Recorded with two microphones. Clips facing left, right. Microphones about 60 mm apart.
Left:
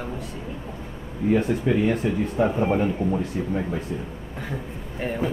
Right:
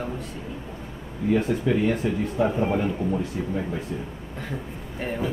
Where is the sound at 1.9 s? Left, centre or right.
Centre.